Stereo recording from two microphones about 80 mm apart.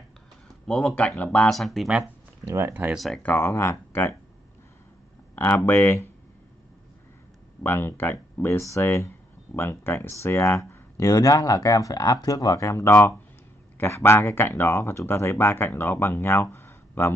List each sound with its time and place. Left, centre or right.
0.7 s speech: centre
1.5 s speech: centre
2.4 s speech: right
3.2 s speech: centre
3.4 s speech: left
5.3 s a sound: left
5.7 s speech: left
7.6 s speech: left